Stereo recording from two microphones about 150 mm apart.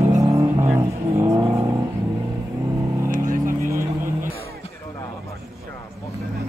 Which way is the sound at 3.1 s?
60° right (ahead or behind).